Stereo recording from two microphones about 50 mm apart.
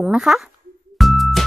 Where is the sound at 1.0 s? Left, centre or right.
Centre.